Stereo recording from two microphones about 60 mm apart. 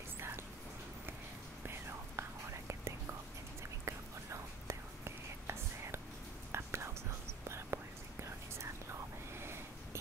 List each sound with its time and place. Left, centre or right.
1.7 s whispering: right
3.8 s whispering: right